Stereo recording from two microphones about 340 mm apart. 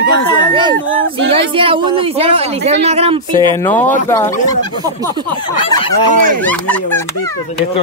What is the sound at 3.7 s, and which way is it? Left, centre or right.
Speech, centre.